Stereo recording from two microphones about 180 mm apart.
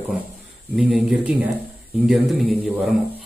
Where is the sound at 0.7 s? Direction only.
5° right (ahead or behind).